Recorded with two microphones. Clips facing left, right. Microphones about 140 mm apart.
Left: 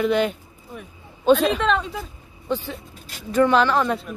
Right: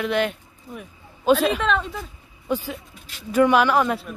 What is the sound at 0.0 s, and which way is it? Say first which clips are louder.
A man's voice: left 3 dB; centre (ahead or behind).